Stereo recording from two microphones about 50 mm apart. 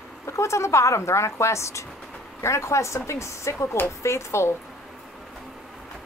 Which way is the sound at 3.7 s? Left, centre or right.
Left.